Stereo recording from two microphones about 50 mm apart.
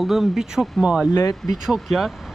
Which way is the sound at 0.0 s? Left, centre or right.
Centre.